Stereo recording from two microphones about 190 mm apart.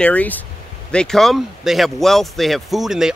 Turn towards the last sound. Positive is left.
turn(degrees=-5)  # may be behind; listen again after turning